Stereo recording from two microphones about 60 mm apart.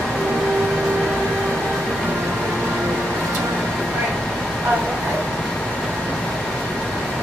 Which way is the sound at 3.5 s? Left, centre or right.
Centre.